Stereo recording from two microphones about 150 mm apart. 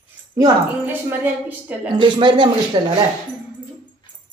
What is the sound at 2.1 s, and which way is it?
Speech, 30° right (ahead or behind).